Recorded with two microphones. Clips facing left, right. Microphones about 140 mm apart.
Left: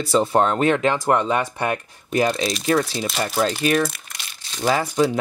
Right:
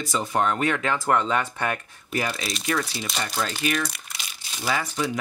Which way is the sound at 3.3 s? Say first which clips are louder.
Left 7 dB; 40° left (ahead or behind).